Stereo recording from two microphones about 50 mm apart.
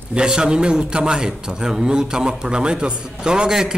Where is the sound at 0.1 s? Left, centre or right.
Centre.